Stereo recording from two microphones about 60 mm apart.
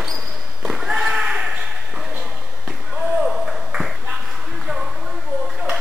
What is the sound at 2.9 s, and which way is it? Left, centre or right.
Ping, centre.